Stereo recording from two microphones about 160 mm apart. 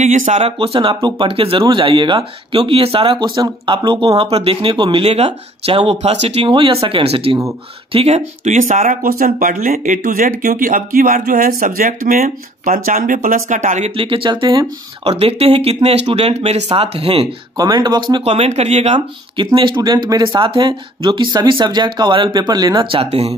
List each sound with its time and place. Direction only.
0.0 s speech: 50° right (ahead or behind)
17.6 s speech: 25° right (ahead or behind)